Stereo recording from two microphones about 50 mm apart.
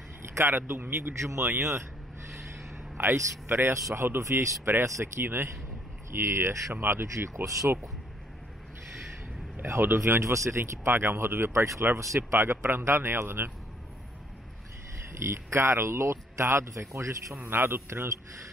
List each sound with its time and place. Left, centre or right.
0.4 s speech: right
0.7 s speech: right
1.2 s speech: right
3.0 s speech: right
4.8 s speech: right
5.2 s speech: right
6.7 s speech: right
7.7 s speech: right
9.7 s speech: right
9.9 s speech: right
10.6 s speech: right
15.1 s speech: right
17.5 s speech: right
17.7 s speech: right